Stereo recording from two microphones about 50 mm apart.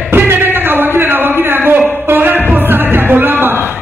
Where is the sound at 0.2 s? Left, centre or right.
Right.